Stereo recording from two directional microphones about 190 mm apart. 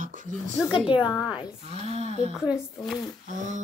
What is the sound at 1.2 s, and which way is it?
Speech, 25° left (ahead or behind).